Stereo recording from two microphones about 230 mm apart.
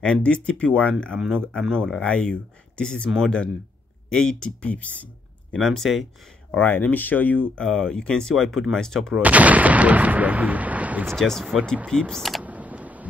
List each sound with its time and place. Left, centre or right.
0.0 s speech: centre